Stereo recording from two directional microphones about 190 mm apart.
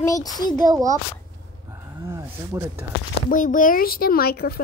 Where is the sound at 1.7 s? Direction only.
15° right (ahead or behind).